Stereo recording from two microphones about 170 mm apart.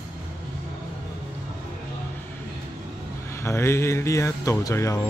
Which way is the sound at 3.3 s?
15° left (ahead or behind).